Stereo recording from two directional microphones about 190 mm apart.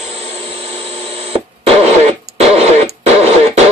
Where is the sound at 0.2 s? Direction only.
30° right (ahead or behind).